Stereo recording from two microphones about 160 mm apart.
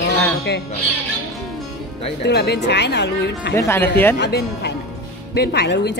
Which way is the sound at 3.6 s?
15° left (ahead or behind).